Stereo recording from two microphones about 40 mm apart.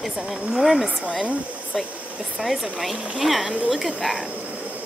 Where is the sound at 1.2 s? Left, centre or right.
Right.